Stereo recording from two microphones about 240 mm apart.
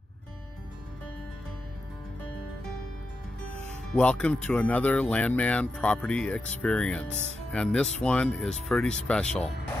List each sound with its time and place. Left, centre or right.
3.9 s speech: centre